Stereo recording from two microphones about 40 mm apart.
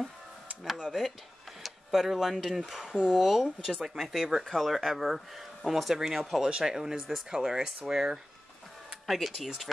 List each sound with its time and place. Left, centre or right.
0.7 s speech: centre
9.0 s speech: centre